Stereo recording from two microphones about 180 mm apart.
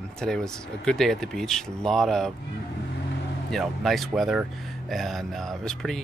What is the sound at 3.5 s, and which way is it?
Speech, centre (ahead or behind).